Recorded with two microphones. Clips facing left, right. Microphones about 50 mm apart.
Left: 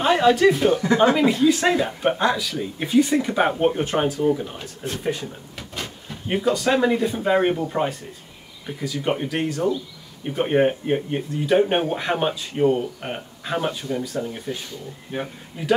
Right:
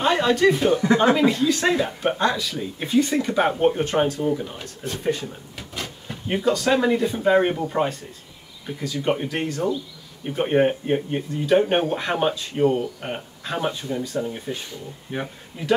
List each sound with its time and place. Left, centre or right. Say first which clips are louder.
0.0 s speech: left 2 dB; centre
15.1 s speech: even; right